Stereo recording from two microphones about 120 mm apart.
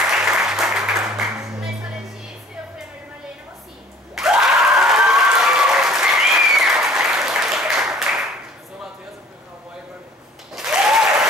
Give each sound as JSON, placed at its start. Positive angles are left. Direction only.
{"t": 0.1, "sound": "applause", "side_deg": -5}
{"t": 4.1, "sound": "applause", "side_deg": -5}
{"t": 10.5, "sound": "applause", "side_deg": -5}